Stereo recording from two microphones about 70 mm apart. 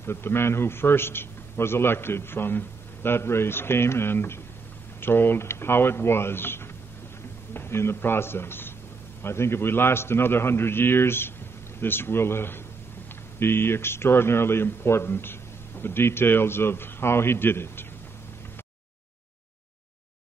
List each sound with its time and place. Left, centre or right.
0.0 s speech: left